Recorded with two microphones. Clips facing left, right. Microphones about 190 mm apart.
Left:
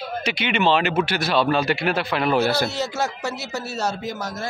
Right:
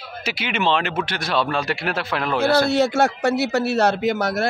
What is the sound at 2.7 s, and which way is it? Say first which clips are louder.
A man's voice: right 8 dB; 55° right (ahead or behind).